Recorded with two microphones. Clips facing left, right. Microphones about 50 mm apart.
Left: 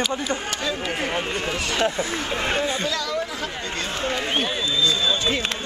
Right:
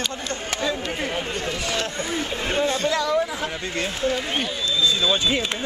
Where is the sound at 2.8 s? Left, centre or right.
Right.